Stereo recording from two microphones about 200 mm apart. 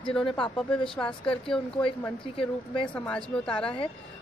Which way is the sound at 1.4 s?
5° left (ahead or behind).